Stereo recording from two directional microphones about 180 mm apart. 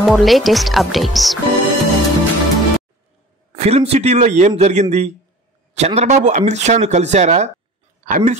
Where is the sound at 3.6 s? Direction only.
35° right (ahead or behind).